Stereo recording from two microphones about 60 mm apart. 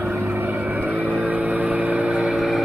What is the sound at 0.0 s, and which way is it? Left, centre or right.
Vehicle, right.